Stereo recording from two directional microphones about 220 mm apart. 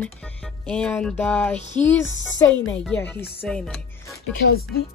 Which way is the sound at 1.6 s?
30° left (ahead or behind).